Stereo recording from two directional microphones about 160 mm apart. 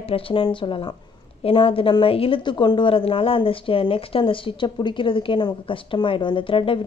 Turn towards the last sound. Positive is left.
turn(degrees=35)  # may be behind; listen again after turning